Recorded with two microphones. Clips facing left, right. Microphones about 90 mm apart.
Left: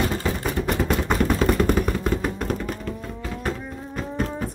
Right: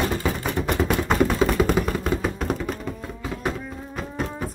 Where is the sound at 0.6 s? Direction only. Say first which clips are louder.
Right 1 dB; centre (ahead or behind).